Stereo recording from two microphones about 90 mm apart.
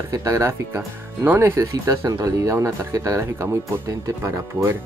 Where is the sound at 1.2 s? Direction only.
20° right (ahead or behind).